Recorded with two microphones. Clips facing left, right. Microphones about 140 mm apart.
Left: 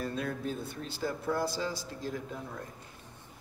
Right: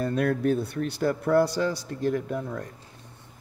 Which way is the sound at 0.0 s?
70° right (ahead or behind).